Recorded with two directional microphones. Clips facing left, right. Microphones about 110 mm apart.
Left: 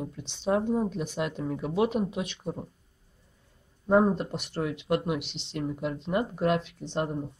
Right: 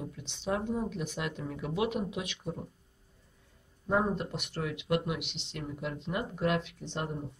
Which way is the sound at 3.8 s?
30° left (ahead or behind).